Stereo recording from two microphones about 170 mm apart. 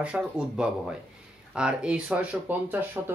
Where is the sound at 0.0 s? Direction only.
5° right (ahead or behind).